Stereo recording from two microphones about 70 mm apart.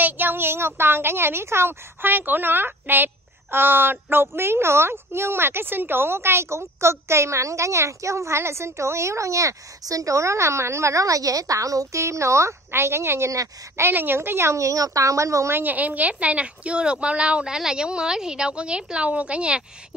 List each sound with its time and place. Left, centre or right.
0.0 s a woman's voice: right
13.3 s a woman's voice: right
13.8 s a woman's voice: right
15.5 s a woman's voice: right